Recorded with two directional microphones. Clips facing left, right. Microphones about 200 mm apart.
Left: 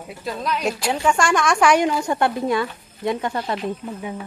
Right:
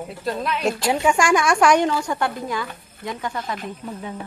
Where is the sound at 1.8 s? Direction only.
20° left (ahead or behind).